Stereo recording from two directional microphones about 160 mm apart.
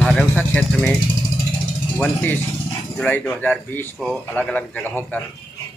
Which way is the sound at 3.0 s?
10° left (ahead or behind).